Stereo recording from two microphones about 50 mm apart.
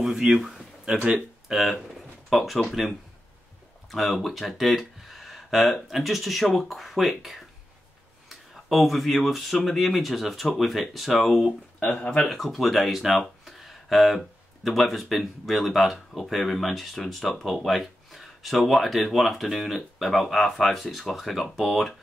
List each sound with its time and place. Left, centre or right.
0.0 s speech: centre
3.9 s speech: centre
11.9 s speech: centre
12.2 s speech: centre